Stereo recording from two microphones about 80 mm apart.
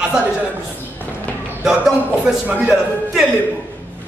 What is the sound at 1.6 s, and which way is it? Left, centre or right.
Speech, centre.